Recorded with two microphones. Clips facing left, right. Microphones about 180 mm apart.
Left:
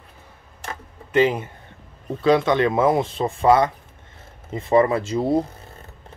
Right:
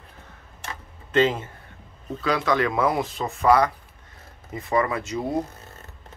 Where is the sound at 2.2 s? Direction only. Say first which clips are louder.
Left 6 dB; 25° left (ahead or behind).